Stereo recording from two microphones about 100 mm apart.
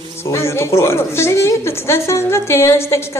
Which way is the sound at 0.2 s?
25° left (ahead or behind).